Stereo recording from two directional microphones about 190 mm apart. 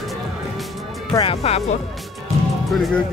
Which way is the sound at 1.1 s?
30° left (ahead or behind).